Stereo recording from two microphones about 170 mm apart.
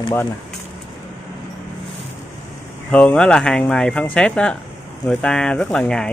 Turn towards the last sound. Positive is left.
turn(degrees=5)  # may be behind; listen again after turning